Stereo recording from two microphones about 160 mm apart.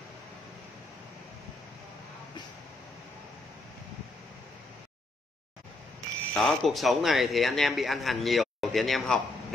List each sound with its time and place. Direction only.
5.9 s speech: centre (ahead or behind)